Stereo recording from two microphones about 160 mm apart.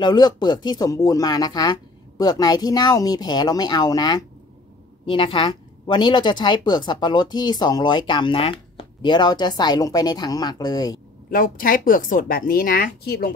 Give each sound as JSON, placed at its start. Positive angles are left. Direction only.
{"t": 0.0, "sound": "speech", "side_deg": 25}
{"t": 11.2, "sound": "speech", "side_deg": 60}